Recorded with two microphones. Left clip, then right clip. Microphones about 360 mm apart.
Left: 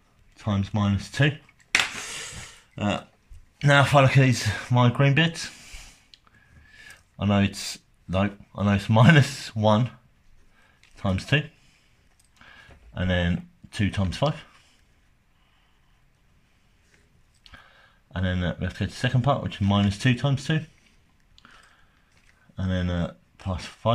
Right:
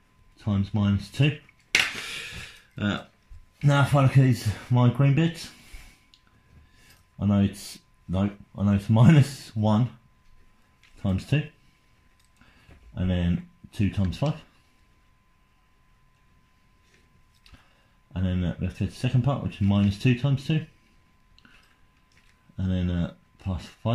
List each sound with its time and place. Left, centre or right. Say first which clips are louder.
0.5 s speech: left 1 dB; left
2.0 s a sound: right 1 dB; centre
3.5 s speech: left 6 dB; left
7.2 s speech: left 3 dB; left
11.0 s speech: left 5 dB; left
12.9 s speech: left 5 dB; left
18.1 s speech: left 4 dB; left
22.6 s speech: left 2 dB; left